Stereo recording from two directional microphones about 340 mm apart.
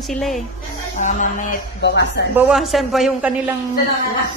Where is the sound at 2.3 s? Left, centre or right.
Centre.